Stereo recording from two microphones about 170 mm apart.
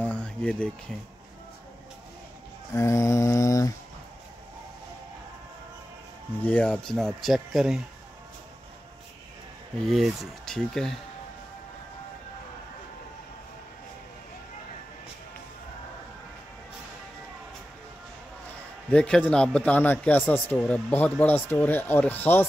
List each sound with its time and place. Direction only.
0.0 s a sound: 5° left (ahead or behind)
2.7 s a man's voice: 15° left (ahead or behind)
6.4 s speech: 10° left (ahead or behind)
9.8 s speech: centre (ahead or behind)
18.9 s a man's voice: 5° left (ahead or behind)